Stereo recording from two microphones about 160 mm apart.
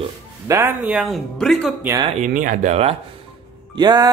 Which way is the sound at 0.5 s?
15° right (ahead or behind).